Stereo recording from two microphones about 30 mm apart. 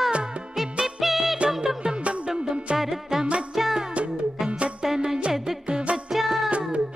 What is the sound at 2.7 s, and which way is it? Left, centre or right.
Music, centre.